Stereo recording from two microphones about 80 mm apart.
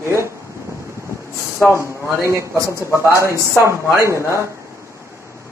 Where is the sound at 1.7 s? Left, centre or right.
Right.